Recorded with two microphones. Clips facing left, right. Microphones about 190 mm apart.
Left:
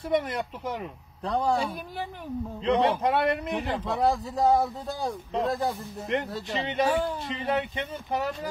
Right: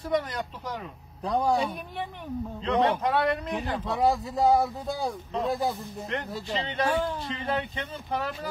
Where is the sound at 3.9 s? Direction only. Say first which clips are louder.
Right 1 dB; 5° right (ahead or behind).